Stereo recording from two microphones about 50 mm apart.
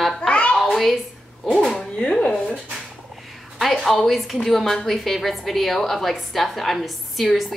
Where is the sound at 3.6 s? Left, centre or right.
Centre.